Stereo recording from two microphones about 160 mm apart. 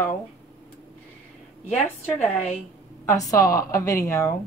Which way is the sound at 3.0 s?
20° left (ahead or behind).